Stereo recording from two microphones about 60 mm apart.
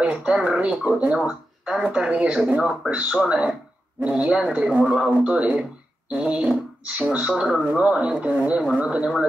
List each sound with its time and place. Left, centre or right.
0.0 s speech: centre